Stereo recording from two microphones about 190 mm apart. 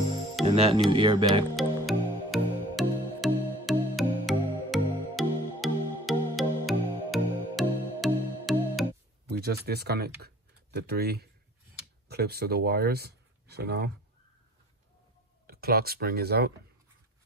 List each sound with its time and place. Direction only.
0.5 s speech: 30° right (ahead or behind)
1.6 s music: centre (ahead or behind)
9.3 s speech: 55° right (ahead or behind)
15.4 s speech: 55° right (ahead or behind)